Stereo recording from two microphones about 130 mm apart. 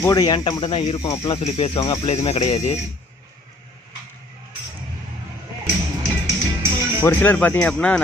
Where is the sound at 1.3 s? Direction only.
50° left (ahead or behind).